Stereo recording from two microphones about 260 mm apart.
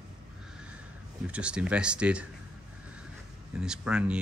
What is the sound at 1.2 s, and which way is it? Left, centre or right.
Speech, centre.